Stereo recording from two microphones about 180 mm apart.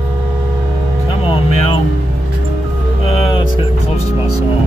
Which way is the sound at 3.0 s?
35° left (ahead or behind).